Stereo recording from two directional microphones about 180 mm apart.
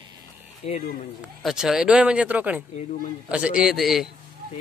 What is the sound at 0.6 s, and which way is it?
Speech, 35° left (ahead or behind).